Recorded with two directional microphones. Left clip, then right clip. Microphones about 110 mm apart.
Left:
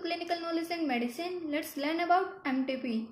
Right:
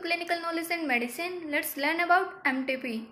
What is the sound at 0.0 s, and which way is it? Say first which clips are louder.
A woman's voice: right 4 dB; 20° left (ahead or behind).